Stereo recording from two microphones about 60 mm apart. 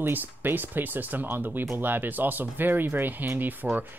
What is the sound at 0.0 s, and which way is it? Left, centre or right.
Speech, right.